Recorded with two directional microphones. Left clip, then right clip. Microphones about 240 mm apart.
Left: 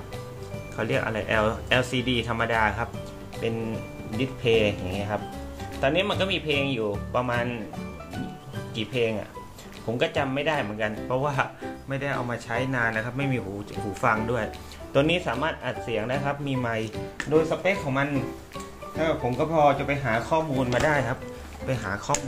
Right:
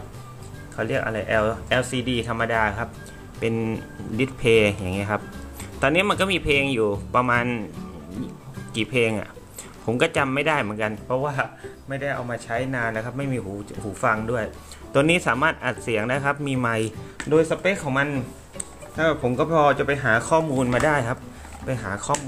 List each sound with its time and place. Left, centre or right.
0.7 s speech: centre
3.4 s speech: right
8.7 s speech: right
11.1 s speech: centre; by 20.6 s right
20.7 s speech: centre